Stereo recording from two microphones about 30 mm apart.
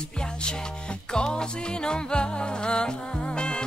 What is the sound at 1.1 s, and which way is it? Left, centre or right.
Music, left.